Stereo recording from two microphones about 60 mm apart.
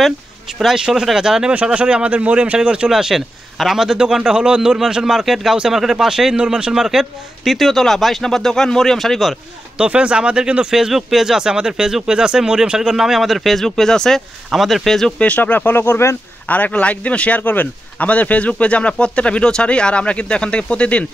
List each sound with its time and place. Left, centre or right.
0.6 s speech: centre
1.5 s speech: right
2.9 s speech: centre
9.8 s speech: centre
15.1 s speech: left
16.4 s speech: left